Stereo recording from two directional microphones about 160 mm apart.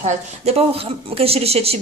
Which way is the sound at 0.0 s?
40° right (ahead or behind).